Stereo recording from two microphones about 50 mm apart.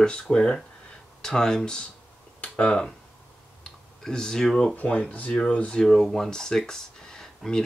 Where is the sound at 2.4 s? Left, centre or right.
Left.